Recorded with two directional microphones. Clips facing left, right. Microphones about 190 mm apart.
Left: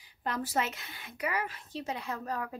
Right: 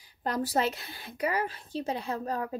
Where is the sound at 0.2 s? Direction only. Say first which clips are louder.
Right 4 dB; 40° right (ahead or behind).